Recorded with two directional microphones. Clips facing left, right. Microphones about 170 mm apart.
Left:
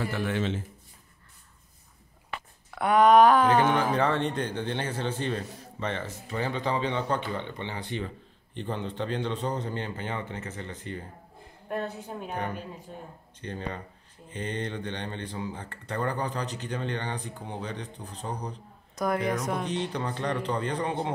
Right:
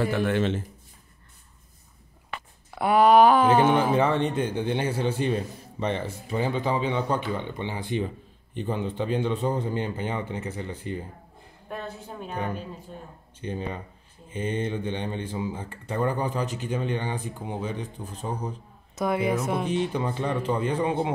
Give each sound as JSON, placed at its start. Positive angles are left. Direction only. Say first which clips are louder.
{"t": 0.0, "sound": "a man's voice", "louder": "right 5 dB", "side_deg": -60}
{"t": 2.7, "sound": "a sound", "louder": "right 1 dB", "side_deg": -5}
{"t": 3.5, "sound": "speech", "louder": "right 3 dB", "side_deg": -10}
{"t": 13.4, "sound": "speech", "louder": "right 4 dB", "side_deg": -10}